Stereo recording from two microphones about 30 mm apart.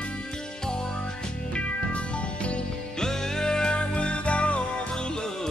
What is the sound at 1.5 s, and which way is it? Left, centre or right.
Music, left.